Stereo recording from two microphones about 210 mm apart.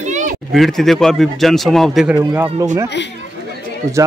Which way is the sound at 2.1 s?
15° right (ahead or behind).